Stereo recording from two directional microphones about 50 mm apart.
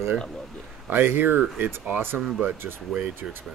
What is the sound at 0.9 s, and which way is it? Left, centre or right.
Speech, right.